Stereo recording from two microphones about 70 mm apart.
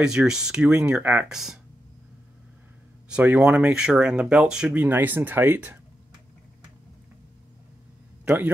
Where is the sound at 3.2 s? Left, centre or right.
Right.